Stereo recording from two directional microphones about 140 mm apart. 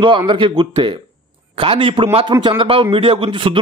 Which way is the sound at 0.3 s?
35° right (ahead or behind).